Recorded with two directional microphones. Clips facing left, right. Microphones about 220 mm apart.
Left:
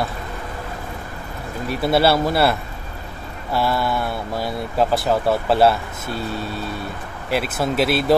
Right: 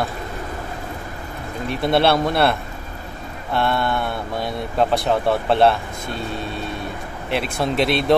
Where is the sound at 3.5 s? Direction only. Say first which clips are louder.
Even; 5° left (ahead or behind).